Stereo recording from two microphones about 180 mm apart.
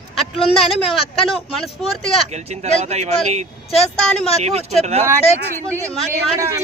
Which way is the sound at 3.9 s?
5° left (ahead or behind).